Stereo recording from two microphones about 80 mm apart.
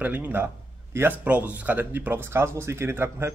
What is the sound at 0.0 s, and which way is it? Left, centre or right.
Speech, right.